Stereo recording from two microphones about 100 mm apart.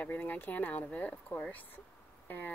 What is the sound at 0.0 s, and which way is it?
Speech, 20° left (ahead or behind).